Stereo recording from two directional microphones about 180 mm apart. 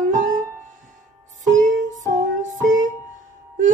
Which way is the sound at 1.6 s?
45° right (ahead or behind).